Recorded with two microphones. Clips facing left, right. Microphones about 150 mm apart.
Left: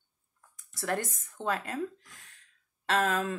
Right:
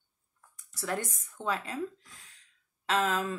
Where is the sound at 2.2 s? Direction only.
50° left (ahead or behind).